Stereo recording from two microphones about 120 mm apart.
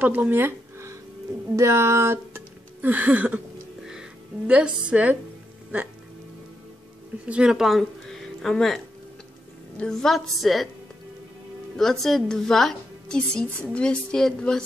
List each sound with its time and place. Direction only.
0.0 s speech: 15° right (ahead or behind)
4.5 s a woman's voice: 10° right (ahead or behind)
7.2 s a woman's voice: 5° right (ahead or behind)
11.7 s a woman's voice: centre (ahead or behind)